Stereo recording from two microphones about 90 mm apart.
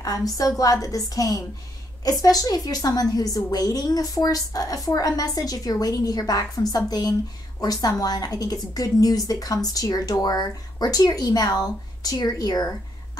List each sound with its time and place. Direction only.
0.0 s a woman's voice: 40° left (ahead or behind)